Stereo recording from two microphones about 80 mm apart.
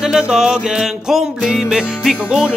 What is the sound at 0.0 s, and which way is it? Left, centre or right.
Music, centre.